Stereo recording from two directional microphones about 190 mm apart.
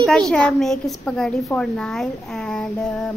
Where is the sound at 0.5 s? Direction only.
Centre (ahead or behind).